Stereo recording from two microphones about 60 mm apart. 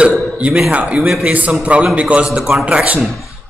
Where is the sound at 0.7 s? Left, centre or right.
Right.